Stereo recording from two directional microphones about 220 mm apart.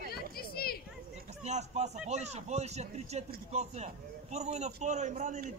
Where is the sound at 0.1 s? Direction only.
45° left (ahead or behind).